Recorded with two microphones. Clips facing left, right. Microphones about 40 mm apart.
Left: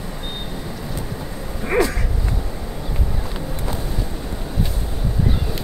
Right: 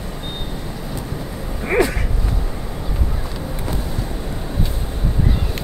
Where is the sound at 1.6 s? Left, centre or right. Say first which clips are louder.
Right 1 dB; centre.